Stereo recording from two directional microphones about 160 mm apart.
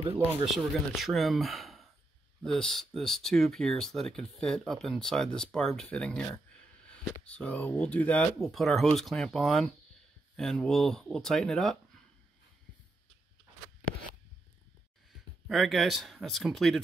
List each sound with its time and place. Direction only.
0.5 s speech: centre (ahead or behind)
15.4 s speech: centre (ahead or behind)